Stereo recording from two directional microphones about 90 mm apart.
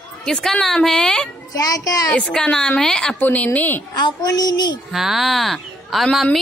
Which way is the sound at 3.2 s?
20° left (ahead or behind).